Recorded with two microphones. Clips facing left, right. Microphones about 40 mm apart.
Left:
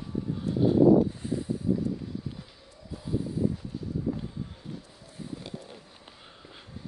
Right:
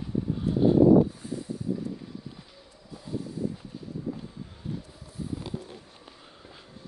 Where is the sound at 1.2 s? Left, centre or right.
Left.